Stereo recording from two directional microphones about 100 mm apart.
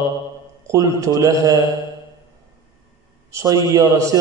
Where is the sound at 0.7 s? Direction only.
35° right (ahead or behind).